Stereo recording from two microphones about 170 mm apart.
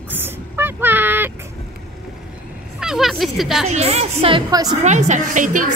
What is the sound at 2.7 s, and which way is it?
Speech, 5° right (ahead or behind).